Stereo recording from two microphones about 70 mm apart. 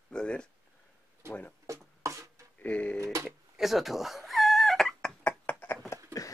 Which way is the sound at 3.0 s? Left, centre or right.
Right.